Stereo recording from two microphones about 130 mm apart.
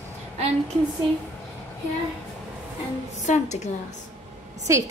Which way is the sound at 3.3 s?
70° left (ahead or behind).